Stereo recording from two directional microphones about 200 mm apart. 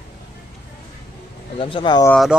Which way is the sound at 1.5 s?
25° left (ahead or behind).